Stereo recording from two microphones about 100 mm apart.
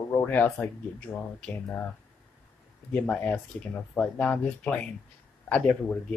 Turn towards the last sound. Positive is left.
turn(degrees=10)  # may be behind; listen again after turning